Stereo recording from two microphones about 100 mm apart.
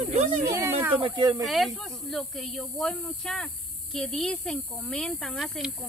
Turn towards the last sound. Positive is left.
turn(degrees=0)  # may be behind; listen again after turning